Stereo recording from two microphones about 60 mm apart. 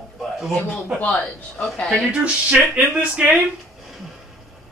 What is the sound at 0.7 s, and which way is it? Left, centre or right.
Speech, left.